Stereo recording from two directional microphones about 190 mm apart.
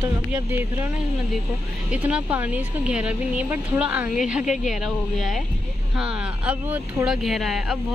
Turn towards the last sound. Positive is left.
turn(degrees=0)  # may be behind; listen again after turning